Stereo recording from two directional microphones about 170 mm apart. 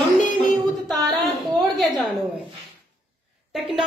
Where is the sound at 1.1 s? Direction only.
20° right (ahead or behind).